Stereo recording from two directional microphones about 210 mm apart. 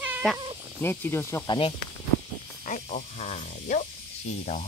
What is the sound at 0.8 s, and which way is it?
Speech, 10° left (ahead or behind).